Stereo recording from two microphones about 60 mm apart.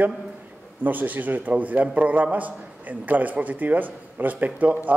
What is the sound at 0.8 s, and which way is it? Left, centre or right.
A man's voice, right.